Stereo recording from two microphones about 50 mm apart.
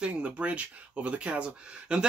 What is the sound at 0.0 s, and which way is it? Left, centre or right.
Speech, right.